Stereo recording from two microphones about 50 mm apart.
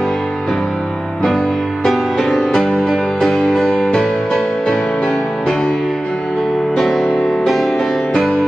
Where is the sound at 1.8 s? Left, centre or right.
Centre.